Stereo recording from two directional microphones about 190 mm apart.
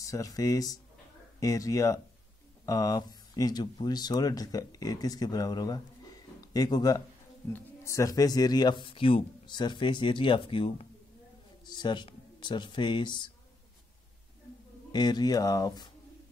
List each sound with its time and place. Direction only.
0.0 s speech: 15° left (ahead or behind)
14.9 s speech: 20° left (ahead or behind)